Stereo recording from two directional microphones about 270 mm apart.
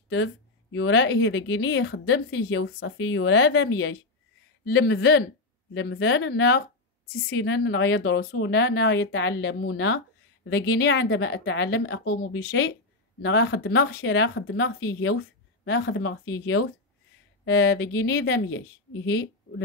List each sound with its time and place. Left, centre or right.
0.1 s a woman's voice: left